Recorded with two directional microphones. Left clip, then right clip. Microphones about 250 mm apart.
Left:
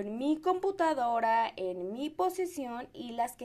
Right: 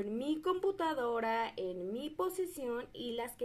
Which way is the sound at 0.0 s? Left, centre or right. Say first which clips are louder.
Left 5 dB; left.